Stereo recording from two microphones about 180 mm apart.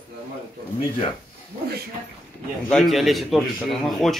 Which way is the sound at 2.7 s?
Centre (ahead or behind).